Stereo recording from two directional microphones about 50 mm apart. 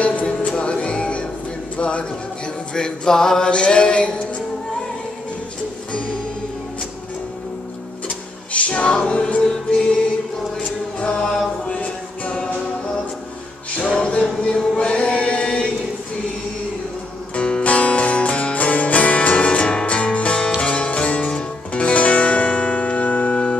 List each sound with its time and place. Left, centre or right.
0.0 s music: left
2.7 s a sound: centre
8.5 s music: left
11.6 s music: left
13.9 s music: left
17.4 s music: left